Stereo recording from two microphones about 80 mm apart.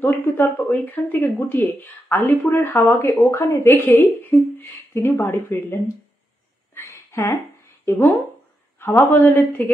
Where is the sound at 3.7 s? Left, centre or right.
Left.